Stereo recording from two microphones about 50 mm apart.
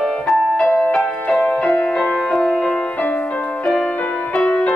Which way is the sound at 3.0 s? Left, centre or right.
Left.